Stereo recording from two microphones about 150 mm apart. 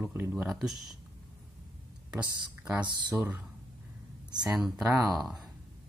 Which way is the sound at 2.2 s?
30° right (ahead or behind).